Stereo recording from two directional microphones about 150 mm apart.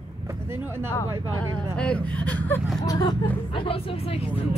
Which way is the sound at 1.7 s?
5° left (ahead or behind).